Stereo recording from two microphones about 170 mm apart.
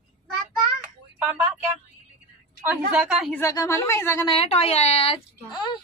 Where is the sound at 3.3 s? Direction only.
20° left (ahead or behind).